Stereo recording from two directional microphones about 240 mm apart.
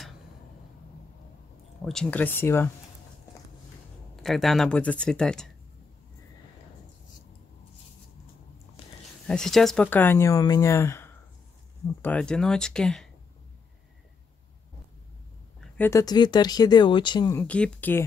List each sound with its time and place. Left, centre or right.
1.9 s speech: centre
4.2 s speech: centre
9.3 s speech: centre
15.8 s speech: centre